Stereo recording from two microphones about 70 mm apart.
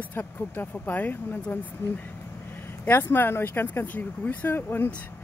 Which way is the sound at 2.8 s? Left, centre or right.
Left.